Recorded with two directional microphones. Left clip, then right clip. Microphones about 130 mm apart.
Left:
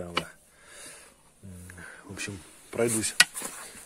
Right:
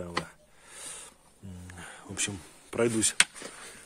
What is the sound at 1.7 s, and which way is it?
Music, 20° right (ahead or behind).